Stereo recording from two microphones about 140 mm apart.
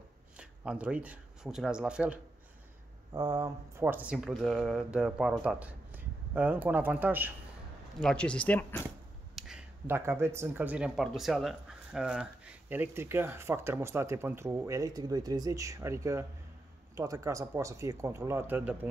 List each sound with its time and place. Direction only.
0.4 s speech: 10° right (ahead or behind)
3.1 s speech: 25° right (ahead or behind)
3.8 s speech: 10° right (ahead or behind)
8.0 s speech: 5° left (ahead or behind)
9.3 s a sound: centre (ahead or behind)
9.8 s speech: 15° right (ahead or behind)